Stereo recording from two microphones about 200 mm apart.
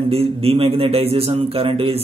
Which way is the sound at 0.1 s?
30° right (ahead or behind).